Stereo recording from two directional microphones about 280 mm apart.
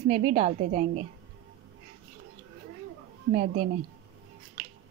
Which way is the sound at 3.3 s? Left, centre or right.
Right.